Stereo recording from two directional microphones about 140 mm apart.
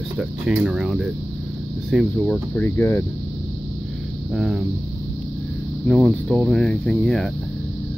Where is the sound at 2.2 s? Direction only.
15° left (ahead or behind).